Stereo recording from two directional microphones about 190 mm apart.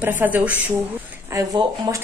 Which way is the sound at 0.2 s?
10° right (ahead or behind).